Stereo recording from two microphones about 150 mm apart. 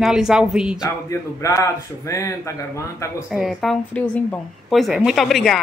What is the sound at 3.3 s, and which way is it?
Speech, 5° right (ahead or behind).